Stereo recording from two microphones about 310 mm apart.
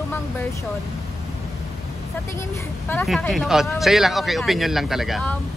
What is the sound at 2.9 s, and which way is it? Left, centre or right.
Speech, centre.